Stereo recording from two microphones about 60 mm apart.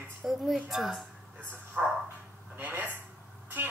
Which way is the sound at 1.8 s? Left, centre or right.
Right.